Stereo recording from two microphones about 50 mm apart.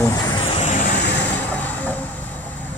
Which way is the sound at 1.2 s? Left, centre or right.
Left.